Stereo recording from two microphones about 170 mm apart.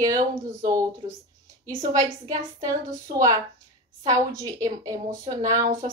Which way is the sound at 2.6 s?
20° right (ahead or behind).